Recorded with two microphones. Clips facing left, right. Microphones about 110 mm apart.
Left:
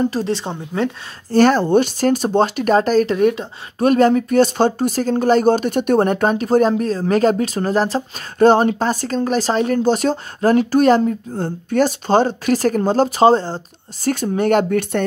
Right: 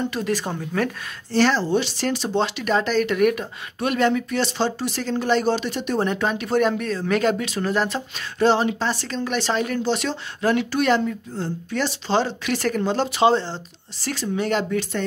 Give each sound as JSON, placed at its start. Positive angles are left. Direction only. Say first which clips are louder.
{"t": 0.0, "sound": "speech", "louder": "left 5 dB", "side_deg": 30}
{"t": 1.3, "sound": "speech", "louder": "left 6 dB", "side_deg": 50}
{"t": 3.2, "sound": "speech", "louder": "left 3 dB", "side_deg": 25}
{"t": 3.8, "sound": "speech", "louder": "left 7 dB", "side_deg": 40}